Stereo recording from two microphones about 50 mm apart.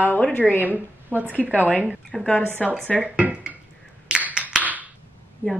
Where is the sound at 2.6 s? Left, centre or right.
Centre.